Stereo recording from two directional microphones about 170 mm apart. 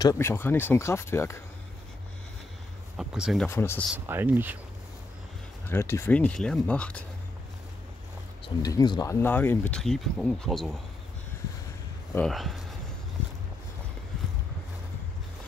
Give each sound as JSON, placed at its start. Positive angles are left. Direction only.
{"t": 0.0, "sound": "speech", "side_deg": 15}
{"t": 3.0, "sound": "speech", "side_deg": -5}
{"t": 3.4, "sound": "speech", "side_deg": 15}
{"t": 4.1, "sound": "speech", "side_deg": -10}
{"t": 5.7, "sound": "speech", "side_deg": 15}
{"t": 8.6, "sound": "speech", "side_deg": 25}
{"t": 12.3, "sound": "speech", "side_deg": 0}